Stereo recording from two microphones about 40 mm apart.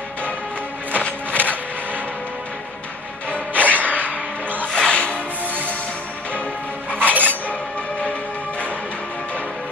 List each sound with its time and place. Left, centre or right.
0.9 s music: left
3.3 s music: left
4.7 s music: left
6.9 s music: left